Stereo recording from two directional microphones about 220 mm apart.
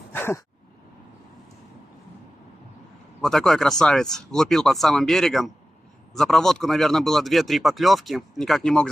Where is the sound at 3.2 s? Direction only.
Centre (ahead or behind).